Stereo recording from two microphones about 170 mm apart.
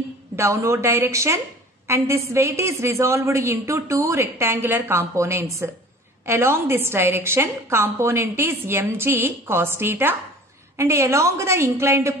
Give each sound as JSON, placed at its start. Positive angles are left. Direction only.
{"t": 0.4, "sound": "a woman's voice", "side_deg": -15}